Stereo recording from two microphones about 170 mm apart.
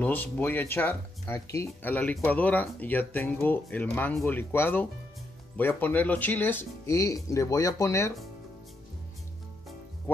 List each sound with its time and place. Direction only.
0.0 s speech: 10° left (ahead or behind)
10.1 s music: 10° left (ahead or behind)